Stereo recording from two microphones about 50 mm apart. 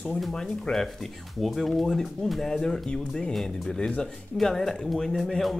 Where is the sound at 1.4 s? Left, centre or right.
Centre.